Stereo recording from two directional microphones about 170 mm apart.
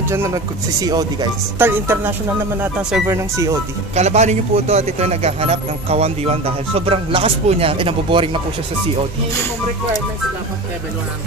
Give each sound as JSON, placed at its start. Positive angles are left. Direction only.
{"t": 0.1, "sound": "speech", "side_deg": -15}
{"t": 3.9, "sound": "speech", "side_deg": -40}